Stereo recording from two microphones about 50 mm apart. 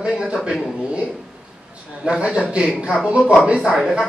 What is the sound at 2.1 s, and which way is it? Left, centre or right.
A man's voice, right.